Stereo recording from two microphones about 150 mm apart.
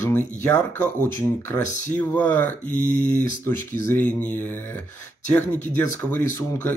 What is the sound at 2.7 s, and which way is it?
Speech, 70° right (ahead or behind).